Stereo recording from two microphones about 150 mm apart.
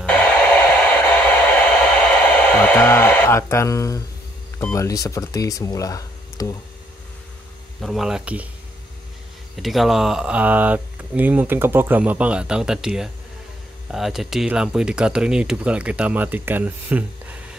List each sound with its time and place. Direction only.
0.0 s radio: 10° left (ahead or behind)
1.2 s a sound: 10° left (ahead or behind)
2.5 s speech: 15° left (ahead or behind)
7.8 s speech: centre (ahead or behind)
9.6 s speech: centre (ahead or behind)